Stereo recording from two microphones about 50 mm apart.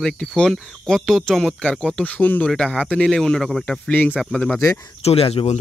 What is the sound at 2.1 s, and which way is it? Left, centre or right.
Speech, left.